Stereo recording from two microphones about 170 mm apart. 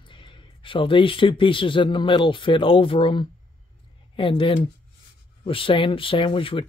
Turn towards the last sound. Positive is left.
turn(degrees=30)  # may be behind; listen again after turning